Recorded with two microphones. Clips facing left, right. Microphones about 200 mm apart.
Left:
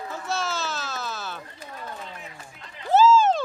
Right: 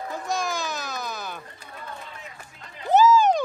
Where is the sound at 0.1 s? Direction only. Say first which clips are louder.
Right 1 dB; 15° right (ahead or behind).